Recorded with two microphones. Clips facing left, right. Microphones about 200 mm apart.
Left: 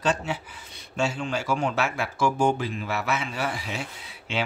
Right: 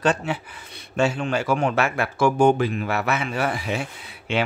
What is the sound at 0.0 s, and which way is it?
Speech, 60° right (ahead or behind).